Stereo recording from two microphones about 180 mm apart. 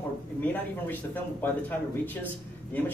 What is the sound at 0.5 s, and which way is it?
Speech, 10° left (ahead or behind).